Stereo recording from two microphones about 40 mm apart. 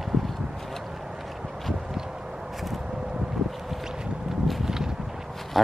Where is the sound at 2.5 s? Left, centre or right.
Centre.